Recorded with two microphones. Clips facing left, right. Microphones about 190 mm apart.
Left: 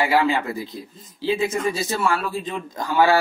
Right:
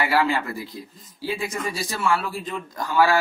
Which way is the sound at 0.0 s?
20° left (ahead or behind).